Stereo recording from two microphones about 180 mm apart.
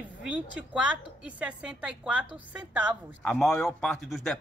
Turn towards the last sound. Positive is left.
turn(degrees=0)  # may be behind; listen again after turning